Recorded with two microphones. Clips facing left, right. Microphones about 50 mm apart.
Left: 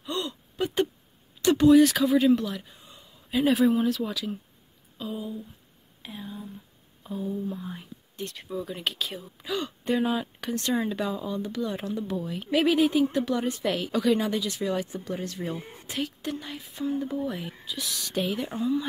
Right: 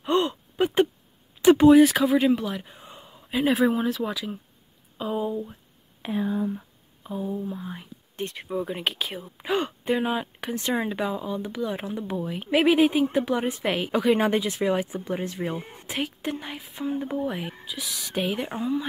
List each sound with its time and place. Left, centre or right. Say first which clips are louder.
0.0 s gasp: right 9 dB; right
1.7 s speech: right 2 dB; centre
2.6 s a sound: right 6 dB; right
3.3 s speech: even; centre
4.9 s a sound: right 7 dB; right
6.0 s speech: right 13 dB; right
7.0 s speech: right 1 dB; centre
8.2 s speech: right 4 dB; right
9.4 s a sound: right 6 dB; right
9.8 s speech: left 2 dB; centre
17.6 s speech: even; centre
18.1 s speech: right 2 dB; centre